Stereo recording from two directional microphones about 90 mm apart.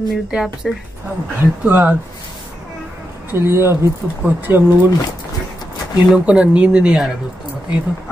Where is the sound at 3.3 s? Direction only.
30° right (ahead or behind).